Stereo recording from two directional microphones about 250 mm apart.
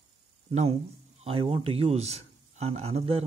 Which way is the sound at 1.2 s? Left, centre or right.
Right.